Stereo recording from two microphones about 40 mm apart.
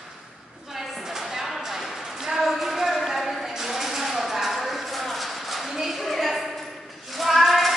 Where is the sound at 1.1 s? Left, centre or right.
Centre.